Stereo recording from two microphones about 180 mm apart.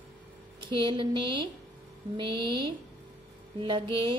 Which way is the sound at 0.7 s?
25° right (ahead or behind).